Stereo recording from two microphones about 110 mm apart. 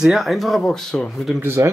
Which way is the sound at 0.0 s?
Centre (ahead or behind).